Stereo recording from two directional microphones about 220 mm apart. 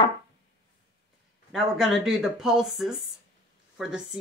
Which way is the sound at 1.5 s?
Centre (ahead or behind).